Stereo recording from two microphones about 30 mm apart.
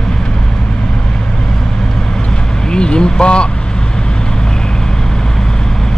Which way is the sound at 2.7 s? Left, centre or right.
Left.